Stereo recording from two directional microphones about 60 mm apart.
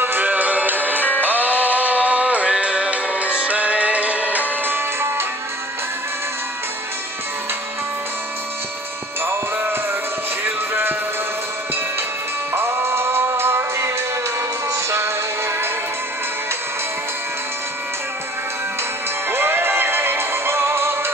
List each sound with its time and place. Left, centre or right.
0.0 s music: right
4.6 s music: right
10.4 s music: right
12.5 s music: right
19.3 s music: right